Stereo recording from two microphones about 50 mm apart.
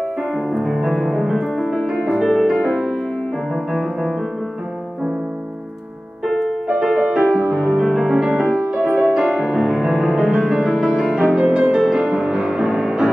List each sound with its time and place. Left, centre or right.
0.5 s music: centre
2.0 s music: centre
6.2 s music: centre
11.0 s music: centre